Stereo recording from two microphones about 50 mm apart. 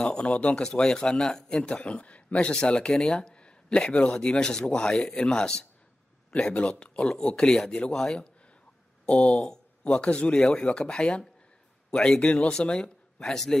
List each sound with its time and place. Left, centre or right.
0.0 s speech: centre
0.3 s speech: left
0.6 s speech: centre
2.9 s speech: centre
3.2 s a sound: left
3.9 s speech: left
9.0 s speech: left